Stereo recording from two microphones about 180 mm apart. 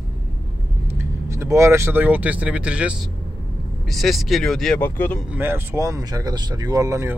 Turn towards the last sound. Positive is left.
turn(degrees=-20)  # may be behind; listen again after turning